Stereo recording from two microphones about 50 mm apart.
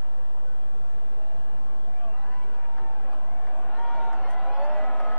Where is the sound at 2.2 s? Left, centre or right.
Left.